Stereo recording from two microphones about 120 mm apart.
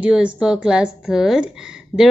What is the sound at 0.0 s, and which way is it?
A woman's voice, 10° right (ahead or behind).